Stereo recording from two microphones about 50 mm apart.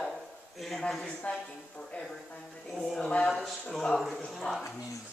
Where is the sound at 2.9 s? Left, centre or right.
Centre.